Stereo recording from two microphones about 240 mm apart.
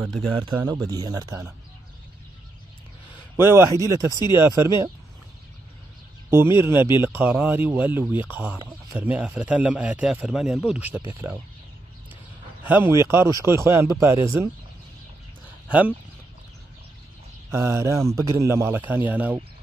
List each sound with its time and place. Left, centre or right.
0.4 s speech: centre
3.3 s speech: centre
6.3 s speech: centre
12.6 s speech: centre
17.5 s speech: centre